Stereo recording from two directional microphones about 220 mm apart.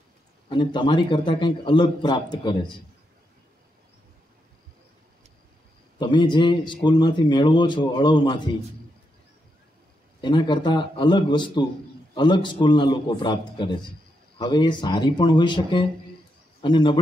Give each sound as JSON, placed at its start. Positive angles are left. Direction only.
{"t": 0.5, "sound": "a man's voice", "side_deg": 20}
{"t": 5.9, "sound": "a man's voice", "side_deg": 20}
{"t": 10.2, "sound": "a man's voice", "side_deg": 20}